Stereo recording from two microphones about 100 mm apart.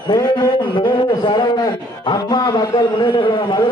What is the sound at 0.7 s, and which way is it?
A man's voice, 50° left (ahead or behind).